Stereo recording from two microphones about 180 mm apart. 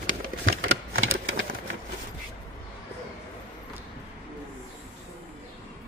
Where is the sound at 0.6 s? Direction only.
60° right (ahead or behind).